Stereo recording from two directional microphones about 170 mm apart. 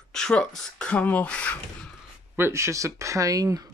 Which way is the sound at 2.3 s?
15° right (ahead or behind).